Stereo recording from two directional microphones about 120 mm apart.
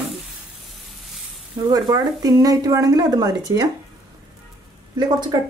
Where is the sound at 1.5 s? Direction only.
35° right (ahead or behind).